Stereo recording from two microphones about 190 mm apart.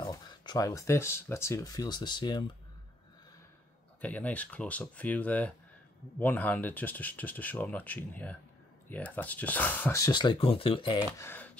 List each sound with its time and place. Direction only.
0.0 s speech: 25° left (ahead or behind)
4.0 s speech: 10° left (ahead or behind); by 11.1 s 25° left (ahead or behind)
11.1 s speech: 10° left (ahead or behind)